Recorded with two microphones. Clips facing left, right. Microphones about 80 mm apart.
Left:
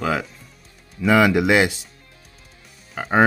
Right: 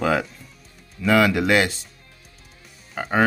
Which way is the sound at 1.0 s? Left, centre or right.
Centre.